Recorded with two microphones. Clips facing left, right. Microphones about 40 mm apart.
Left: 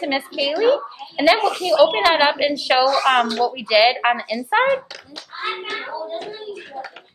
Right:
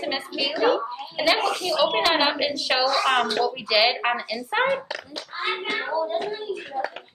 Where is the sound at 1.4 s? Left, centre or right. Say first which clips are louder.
Left 7 dB; centre.